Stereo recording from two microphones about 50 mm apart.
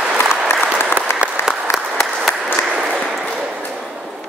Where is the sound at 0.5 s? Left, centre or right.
Left.